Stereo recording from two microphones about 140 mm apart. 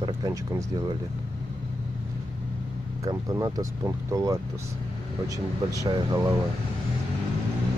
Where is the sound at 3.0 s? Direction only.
25° right (ahead or behind).